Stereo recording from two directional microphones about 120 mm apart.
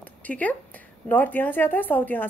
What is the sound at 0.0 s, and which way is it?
Speech, 10° left (ahead or behind).